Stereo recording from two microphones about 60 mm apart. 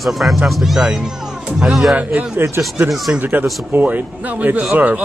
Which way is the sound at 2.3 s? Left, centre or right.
Right.